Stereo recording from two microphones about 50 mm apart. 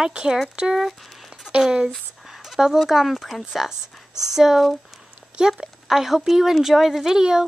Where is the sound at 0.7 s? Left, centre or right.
Centre.